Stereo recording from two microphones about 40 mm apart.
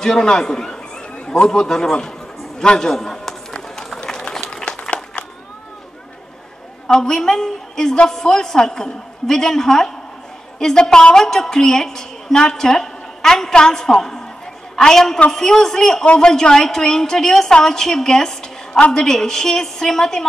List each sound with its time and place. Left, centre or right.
0.0 s a woman's voice: centre
3.7 s run: centre
4.5 s a sound: centre
6.9 s a woman's voice: centre
16.1 s a woman's voice: left